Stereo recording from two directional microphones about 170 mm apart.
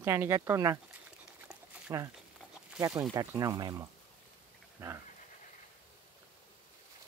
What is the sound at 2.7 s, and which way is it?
Speech, 10° right (ahead or behind).